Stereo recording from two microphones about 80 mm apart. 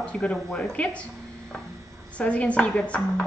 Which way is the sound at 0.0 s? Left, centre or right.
Centre.